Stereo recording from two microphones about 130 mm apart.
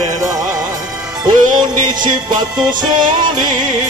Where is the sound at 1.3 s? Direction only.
90° right.